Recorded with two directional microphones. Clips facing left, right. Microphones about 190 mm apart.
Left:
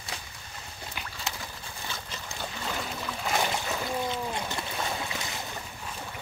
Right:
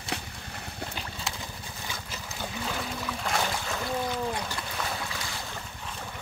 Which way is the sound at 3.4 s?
20° left (ahead or behind).